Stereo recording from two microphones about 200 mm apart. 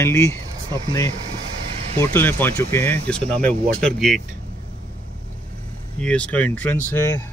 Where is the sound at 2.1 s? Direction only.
10° left (ahead or behind).